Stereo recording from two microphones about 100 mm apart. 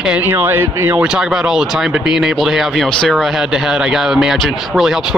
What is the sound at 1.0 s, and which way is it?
Speech, 5° right (ahead or behind).